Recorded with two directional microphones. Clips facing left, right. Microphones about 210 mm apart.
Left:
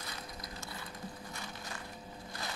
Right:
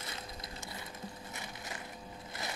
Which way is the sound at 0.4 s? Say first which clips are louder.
Even; 20° right (ahead or behind).